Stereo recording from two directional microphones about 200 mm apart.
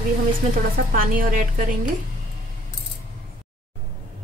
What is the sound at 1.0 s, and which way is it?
Speech, 45° right (ahead or behind).